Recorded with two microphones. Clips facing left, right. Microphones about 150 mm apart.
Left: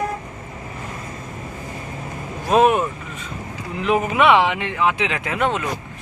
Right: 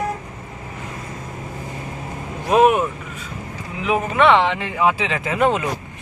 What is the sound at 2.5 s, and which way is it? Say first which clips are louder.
Vehicle: right 1 dB; 10° right (ahead or behind).